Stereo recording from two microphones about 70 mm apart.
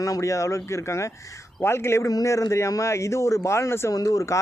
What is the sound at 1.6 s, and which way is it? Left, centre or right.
Speech, left.